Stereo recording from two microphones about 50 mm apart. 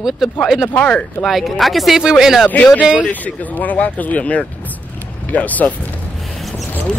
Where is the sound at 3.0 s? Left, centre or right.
Left.